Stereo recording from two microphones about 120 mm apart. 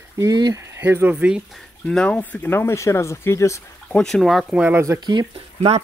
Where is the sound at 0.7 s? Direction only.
15° right (ahead or behind).